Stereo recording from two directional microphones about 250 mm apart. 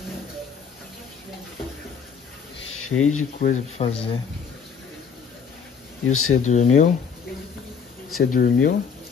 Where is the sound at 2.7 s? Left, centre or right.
Left.